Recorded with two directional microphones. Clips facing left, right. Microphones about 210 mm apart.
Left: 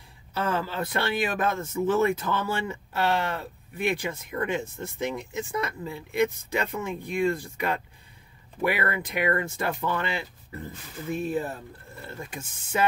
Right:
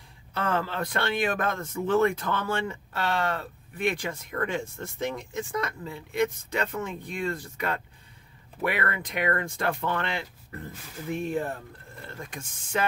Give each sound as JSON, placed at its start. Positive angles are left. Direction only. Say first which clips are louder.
{"t": 0.3, "sound": "speech", "louder": "even", "side_deg": 5}
{"t": 5.5, "sound": "speech", "louder": "left 2 dB", "side_deg": 10}